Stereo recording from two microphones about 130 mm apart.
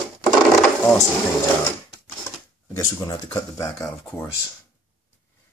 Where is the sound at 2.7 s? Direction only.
30° left (ahead or behind).